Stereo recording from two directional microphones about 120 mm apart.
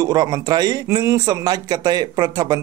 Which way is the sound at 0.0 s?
30° right (ahead or behind).